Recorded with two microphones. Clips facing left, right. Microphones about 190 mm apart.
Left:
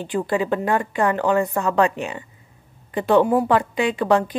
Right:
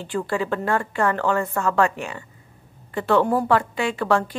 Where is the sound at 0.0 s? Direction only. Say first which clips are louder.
Left 3 dB; 15° left (ahead or behind).